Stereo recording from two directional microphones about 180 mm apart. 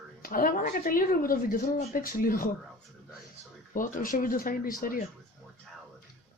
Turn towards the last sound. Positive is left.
turn(degrees=50)  # may be behind; listen again after turning